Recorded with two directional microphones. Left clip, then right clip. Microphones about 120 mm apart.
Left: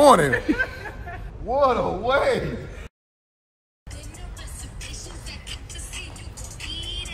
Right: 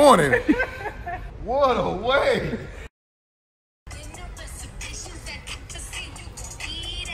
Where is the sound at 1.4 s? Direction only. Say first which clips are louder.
Even; 25° right (ahead or behind).